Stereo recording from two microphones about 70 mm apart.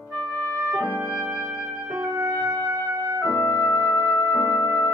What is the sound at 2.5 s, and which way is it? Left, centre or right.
Music, right.